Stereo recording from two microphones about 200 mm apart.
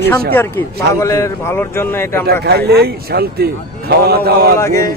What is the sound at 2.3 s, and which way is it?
Speech, 50° right (ahead or behind).